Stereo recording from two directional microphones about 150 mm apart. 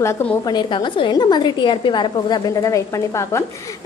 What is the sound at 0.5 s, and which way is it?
A woman's voice, 30° left (ahead or behind).